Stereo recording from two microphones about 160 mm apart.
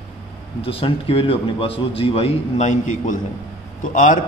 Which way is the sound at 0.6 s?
35° left (ahead or behind).